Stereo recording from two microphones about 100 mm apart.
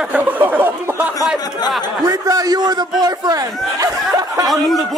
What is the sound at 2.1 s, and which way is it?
Speech, 35° right (ahead or behind).